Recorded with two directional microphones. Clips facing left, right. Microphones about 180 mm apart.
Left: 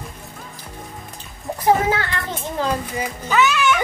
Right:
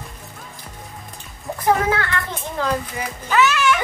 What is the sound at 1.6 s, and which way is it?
Speech, 20° left (ahead or behind).